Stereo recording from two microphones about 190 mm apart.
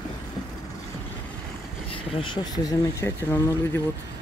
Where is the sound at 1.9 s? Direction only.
25° left (ahead or behind).